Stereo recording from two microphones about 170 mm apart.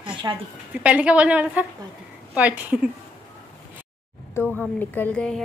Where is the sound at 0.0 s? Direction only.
25° right (ahead or behind).